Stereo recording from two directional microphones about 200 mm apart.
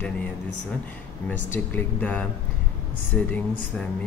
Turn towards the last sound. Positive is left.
turn(degrees=5)  # may be behind; listen again after turning